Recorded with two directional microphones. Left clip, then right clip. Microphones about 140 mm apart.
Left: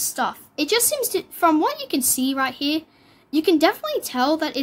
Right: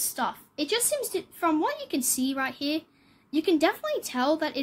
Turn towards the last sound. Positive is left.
turn(degrees=20)  # may be behind; listen again after turning